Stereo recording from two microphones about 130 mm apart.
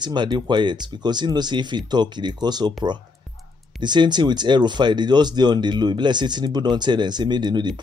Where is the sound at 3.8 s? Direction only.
35° right (ahead or behind).